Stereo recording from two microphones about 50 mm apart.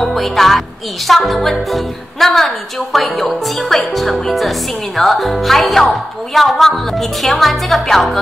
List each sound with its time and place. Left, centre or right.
0.0 s music: centre